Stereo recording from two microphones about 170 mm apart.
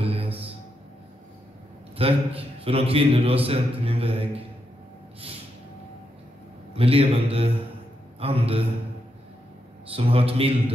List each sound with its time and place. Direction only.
0.0 s music: 35° right (ahead or behind)
2.0 s a man's voice: 35° right (ahead or behind)
6.7 s a man's voice: 35° right (ahead or behind)
9.8 s a man's voice: 35° right (ahead or behind)